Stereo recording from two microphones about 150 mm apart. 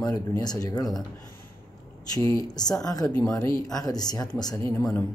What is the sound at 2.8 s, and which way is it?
Speech, 25° left (ahead or behind).